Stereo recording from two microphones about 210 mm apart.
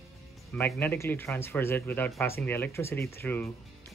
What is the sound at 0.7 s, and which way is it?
Speech, 10° left (ahead or behind).